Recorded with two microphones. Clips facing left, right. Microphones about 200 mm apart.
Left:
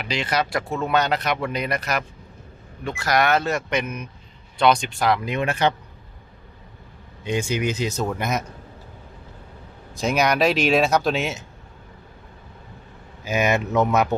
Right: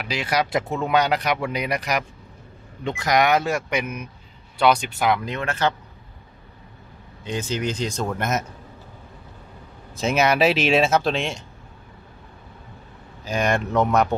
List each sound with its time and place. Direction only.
0.0 s speech: 5° right (ahead or behind)
5.3 s speech: 15° left (ahead or behind)
7.2 s speech: 10° left (ahead or behind)
9.9 s speech: centre (ahead or behind)
13.2 s speech: 5° left (ahead or behind)